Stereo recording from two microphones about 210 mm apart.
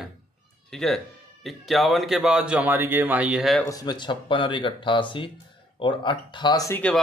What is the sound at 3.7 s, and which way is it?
Speech, 20° left (ahead or behind).